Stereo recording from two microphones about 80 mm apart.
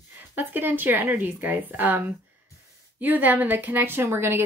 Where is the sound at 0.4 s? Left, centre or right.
Right.